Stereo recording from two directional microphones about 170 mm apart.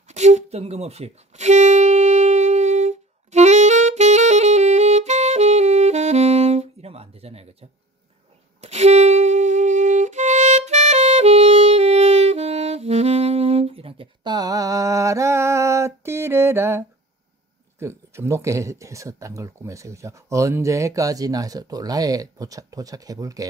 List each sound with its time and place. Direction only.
0.1 s music: 40° right (ahead or behind)
8.5 s music: 40° right (ahead or behind); by 16.8 s 15° right (ahead or behind)
17.7 s speech: 15° right (ahead or behind)